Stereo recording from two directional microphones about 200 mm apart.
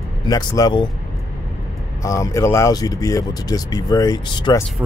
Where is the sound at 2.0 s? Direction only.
15° left (ahead or behind).